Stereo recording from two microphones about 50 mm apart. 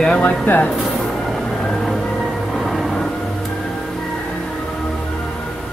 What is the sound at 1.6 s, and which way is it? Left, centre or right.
Music, centre.